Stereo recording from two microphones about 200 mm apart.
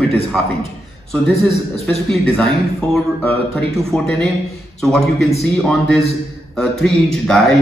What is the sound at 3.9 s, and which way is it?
Speech, centre (ahead or behind).